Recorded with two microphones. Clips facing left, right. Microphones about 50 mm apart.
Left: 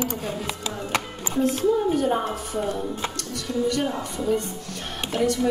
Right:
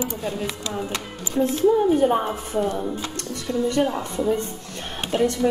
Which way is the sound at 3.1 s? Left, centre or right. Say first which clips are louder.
Right 2 dB; right.